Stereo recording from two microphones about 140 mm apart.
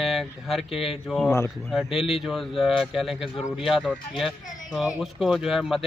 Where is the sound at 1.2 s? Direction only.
20° left (ahead or behind).